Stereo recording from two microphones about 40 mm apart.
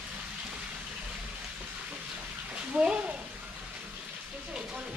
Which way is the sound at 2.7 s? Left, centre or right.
Right.